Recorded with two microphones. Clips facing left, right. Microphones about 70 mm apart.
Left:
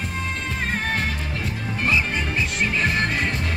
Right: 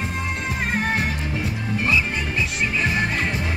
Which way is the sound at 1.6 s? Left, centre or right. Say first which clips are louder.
Even; centre.